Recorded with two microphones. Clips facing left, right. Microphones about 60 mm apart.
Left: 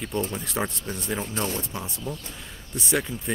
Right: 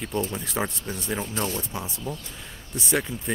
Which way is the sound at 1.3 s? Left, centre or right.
Left.